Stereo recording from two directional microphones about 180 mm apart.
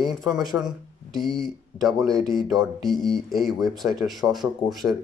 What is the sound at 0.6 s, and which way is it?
Speech, centre (ahead or behind).